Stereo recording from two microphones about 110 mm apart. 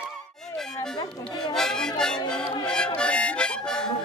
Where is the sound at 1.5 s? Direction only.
5° left (ahead or behind).